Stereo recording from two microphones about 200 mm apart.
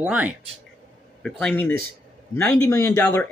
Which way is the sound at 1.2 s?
5° left (ahead or behind).